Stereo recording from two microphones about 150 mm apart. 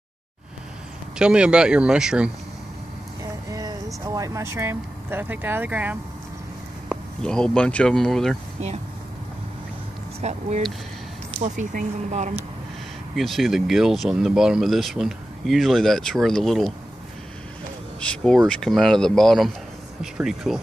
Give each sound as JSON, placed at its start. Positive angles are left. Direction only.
{"t": 1.1, "sound": "speech", "side_deg": -5}
{"t": 3.5, "sound": "speech", "side_deg": -25}
{"t": 7.2, "sound": "speech", "side_deg": 5}
{"t": 10.2, "sound": "speech", "side_deg": -50}
{"t": 11.4, "sound": "speech", "side_deg": -50}
{"t": 13.1, "sound": "speech", "side_deg": 0}
{"t": 18.0, "sound": "speech", "side_deg": 5}